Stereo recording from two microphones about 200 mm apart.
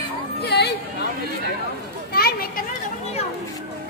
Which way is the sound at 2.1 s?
50° left (ahead or behind).